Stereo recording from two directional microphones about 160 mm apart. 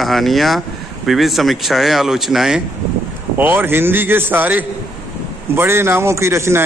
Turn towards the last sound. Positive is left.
turn(degrees=-15)  # may be behind; listen again after turning